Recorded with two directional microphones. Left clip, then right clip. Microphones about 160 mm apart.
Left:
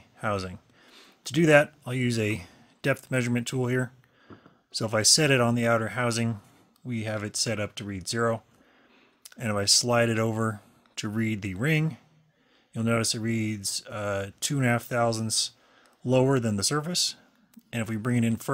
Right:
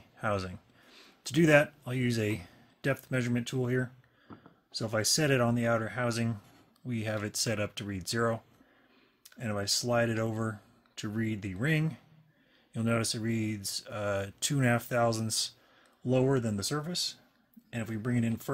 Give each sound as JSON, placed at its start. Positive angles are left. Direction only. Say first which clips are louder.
{"t": 0.2, "sound": "speech", "louder": "left 3 dB", "side_deg": 20}
{"t": 6.9, "sound": "speech", "louder": "left 3 dB", "side_deg": 15}
{"t": 9.2, "sound": "speech", "louder": "left 7 dB", "side_deg": 35}
{"t": 16.0, "sound": "speech", "louder": "left 5 dB", "side_deg": 40}